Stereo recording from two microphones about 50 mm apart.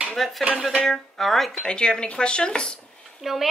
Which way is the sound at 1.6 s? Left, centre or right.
Centre.